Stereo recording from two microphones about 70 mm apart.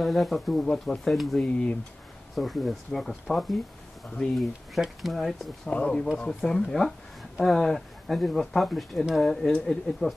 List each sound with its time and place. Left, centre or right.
0.0 s speech: centre
1.4 s speech: centre
2.3 s speech: centre
5.7 s speech: centre